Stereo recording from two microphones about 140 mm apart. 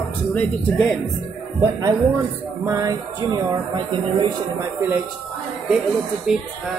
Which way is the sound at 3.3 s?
35° right (ahead or behind).